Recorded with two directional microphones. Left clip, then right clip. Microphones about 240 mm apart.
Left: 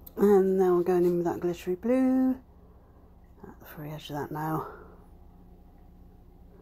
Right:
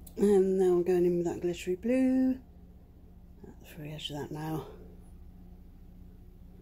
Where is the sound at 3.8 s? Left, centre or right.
Centre.